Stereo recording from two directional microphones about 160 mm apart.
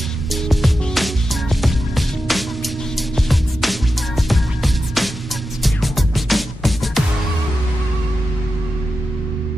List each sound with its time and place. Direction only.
0.3 s music: centre (ahead or behind)